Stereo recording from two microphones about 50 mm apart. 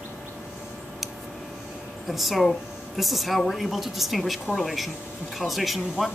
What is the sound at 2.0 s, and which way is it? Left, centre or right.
Speech, centre.